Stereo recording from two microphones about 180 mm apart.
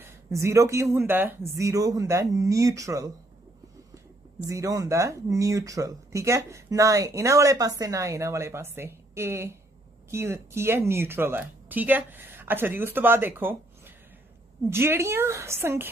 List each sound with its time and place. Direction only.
0.0 s speech: 15° right (ahead or behind)